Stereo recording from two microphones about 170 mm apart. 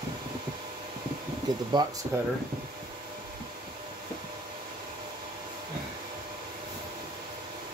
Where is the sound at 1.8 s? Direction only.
25° right (ahead or behind).